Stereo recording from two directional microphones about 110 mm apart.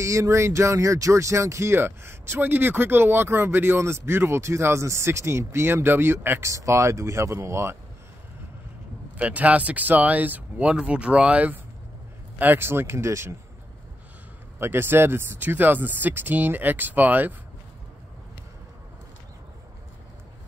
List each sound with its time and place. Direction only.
0.0 s speech: 30° right (ahead or behind)
9.1 s speech: 15° right (ahead or behind)
14.6 s speech: 20° right (ahead or behind)